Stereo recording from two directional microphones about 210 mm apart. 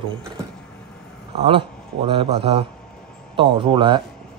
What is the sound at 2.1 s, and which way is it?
Speech, 25° right (ahead or behind).